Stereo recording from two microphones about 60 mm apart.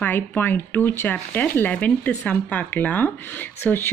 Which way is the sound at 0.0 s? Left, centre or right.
Left.